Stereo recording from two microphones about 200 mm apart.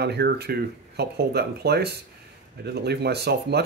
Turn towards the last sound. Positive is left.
turn(degrees=-55)  # may be behind; listen again after turning